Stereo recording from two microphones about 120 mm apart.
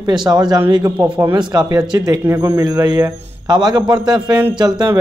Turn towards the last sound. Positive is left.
turn(degrees=-35)  # may be behind; listen again after turning